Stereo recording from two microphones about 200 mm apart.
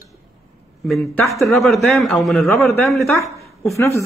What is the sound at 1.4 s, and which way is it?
A man's voice, centre (ahead or behind).